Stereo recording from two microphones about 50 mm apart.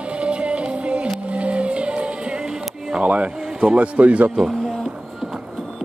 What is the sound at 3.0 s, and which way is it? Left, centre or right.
Speech, right.